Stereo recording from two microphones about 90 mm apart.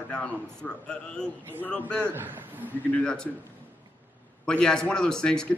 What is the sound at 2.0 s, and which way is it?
Speech, 25° right (ahead or behind).